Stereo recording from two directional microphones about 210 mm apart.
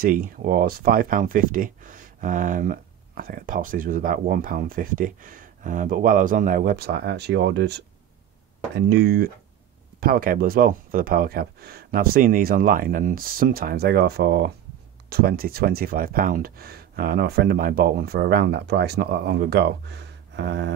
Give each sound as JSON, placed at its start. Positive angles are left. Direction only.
{"t": 0.0, "sound": "speech", "side_deg": -40}